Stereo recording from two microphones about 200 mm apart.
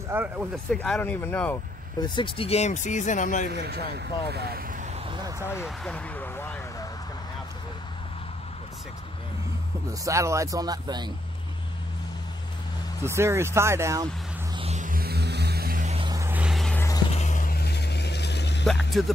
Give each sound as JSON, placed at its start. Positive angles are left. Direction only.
{"t": 0.1, "sound": "speech", "side_deg": -10}
{"t": 0.7, "sound": "speech", "side_deg": 5}
{"t": 2.0, "sound": "speech", "side_deg": 20}
{"t": 3.4, "sound": "speech", "side_deg": -55}
{"t": 5.5, "sound": "speech", "side_deg": 10}
{"t": 9.8, "sound": "speech", "side_deg": -15}
{"t": 13.0, "sound": "speech", "side_deg": -15}
{"t": 14.5, "sound": "music", "side_deg": -30}
{"t": 16.1, "sound": "vehicle", "side_deg": -10}
{"t": 17.1, "sound": "vehicle", "side_deg": 35}
{"t": 19.0, "sound": "speech", "side_deg": 0}